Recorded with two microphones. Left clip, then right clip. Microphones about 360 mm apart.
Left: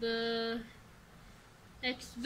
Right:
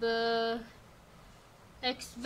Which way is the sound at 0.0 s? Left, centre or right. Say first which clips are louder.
Right 4 dB; centre.